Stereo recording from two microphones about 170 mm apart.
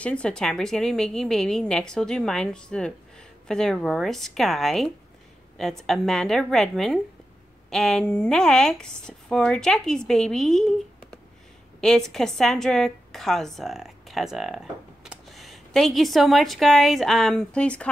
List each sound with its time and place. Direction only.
0.0 s a woman's voice: 5° left (ahead or behind)
11.8 s a woman's voice: centre (ahead or behind)